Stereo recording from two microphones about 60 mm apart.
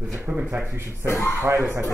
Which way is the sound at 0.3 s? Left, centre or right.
Right.